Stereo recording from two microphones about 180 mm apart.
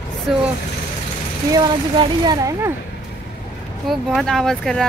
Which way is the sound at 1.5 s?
25° right (ahead or behind).